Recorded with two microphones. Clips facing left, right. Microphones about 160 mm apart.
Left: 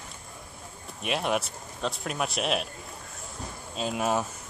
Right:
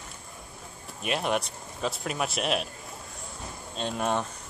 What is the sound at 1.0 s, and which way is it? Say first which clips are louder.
Speech: even; centre (ahead or behind).